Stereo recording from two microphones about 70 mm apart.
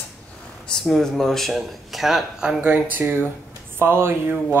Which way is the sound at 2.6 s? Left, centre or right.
Right.